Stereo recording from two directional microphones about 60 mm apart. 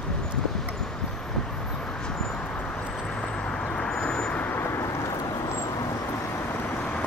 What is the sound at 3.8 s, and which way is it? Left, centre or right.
Vehicle, centre.